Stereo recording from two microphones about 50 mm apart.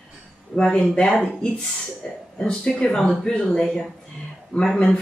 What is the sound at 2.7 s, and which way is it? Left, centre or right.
A woman's voice, centre.